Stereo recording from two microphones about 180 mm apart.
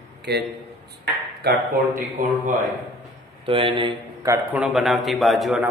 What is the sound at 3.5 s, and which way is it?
A man's voice, 30° right (ahead or behind).